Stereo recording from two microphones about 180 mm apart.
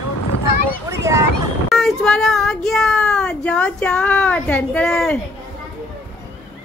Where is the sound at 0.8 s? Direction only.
15° right (ahead or behind).